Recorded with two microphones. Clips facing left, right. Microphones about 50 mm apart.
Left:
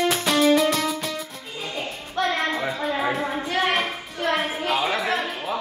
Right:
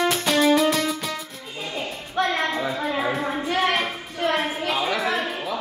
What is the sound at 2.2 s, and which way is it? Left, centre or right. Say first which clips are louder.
Music: even; centre.